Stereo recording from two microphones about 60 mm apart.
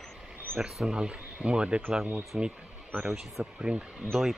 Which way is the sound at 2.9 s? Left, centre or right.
Right.